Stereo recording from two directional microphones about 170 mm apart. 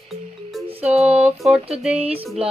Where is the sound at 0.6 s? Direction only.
40° right (ahead or behind).